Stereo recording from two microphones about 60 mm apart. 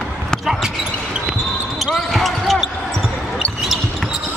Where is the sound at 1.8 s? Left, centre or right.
Centre.